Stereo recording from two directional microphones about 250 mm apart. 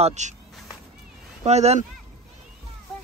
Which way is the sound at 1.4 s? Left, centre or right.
Right.